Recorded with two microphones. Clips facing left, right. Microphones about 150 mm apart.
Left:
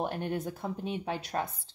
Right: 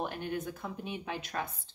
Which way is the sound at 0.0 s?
35° left (ahead or behind).